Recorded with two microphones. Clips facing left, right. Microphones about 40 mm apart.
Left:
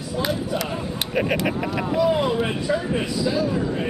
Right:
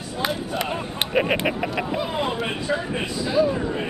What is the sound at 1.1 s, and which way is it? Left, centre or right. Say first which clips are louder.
Speech: right 1 dB; right.